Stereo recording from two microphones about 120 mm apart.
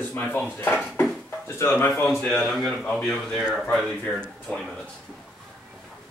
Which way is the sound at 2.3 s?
Centre (ahead or behind).